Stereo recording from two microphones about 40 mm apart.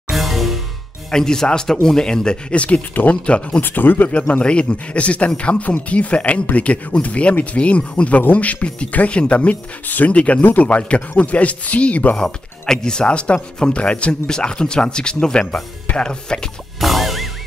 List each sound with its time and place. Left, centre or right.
0.1 s music: centre
1.1 s a man's voice: centre
2.5 s a man's voice: left
2.9 s speech: left
3.3 s speech: left
3.6 s speech: left
4.3 s a man's voice: left
9.8 s a man's voice: left
12.6 s a man's voice: centre
16.8 s music: centre